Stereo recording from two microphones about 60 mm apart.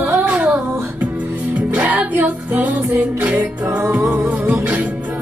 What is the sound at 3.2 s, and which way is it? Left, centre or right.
Music, right.